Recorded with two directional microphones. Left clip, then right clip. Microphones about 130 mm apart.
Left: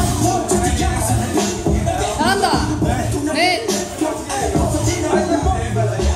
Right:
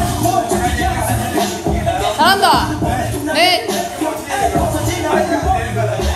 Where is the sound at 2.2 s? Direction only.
45° left (ahead or behind).